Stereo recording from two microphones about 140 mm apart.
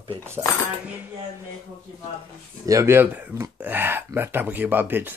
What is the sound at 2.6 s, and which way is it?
Speech, 25° right (ahead or behind).